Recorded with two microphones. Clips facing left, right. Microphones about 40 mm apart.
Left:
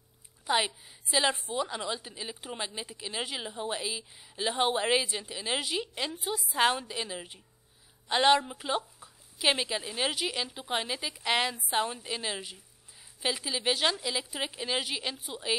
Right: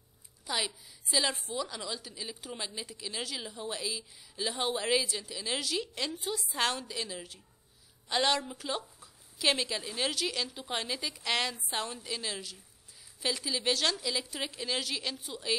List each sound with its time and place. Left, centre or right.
0.5 s a woman's voice: left